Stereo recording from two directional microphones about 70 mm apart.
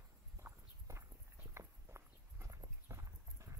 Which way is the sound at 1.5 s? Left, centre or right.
Right.